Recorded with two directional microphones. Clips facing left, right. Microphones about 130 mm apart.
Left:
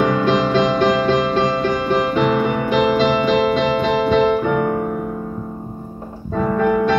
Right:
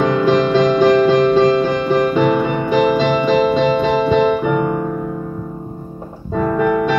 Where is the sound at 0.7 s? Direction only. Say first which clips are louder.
Right 5 dB; 5° right (ahead or behind).